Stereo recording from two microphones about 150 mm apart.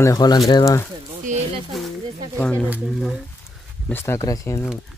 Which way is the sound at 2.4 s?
5° left (ahead or behind).